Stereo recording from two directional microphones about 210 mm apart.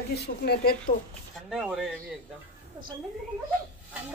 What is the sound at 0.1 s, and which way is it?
Speech, 50° left (ahead or behind).